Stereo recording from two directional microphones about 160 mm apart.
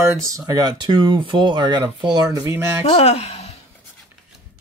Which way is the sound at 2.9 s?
40° left (ahead or behind).